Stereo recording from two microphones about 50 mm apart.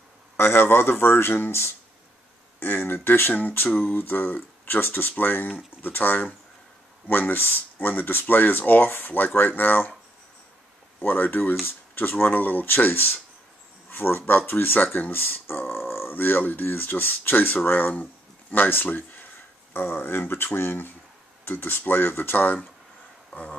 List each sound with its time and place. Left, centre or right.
0.4 s speech: left
3.3 s speech: left
11.0 s speech: left